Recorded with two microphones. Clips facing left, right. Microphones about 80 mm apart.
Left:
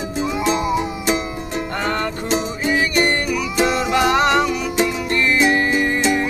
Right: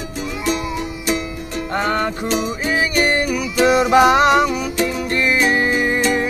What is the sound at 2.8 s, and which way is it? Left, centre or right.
Music, centre.